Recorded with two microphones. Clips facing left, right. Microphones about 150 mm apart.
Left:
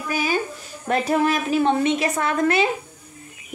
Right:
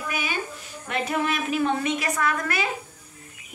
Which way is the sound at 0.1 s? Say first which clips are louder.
Left 9 dB; 35° left (ahead or behind).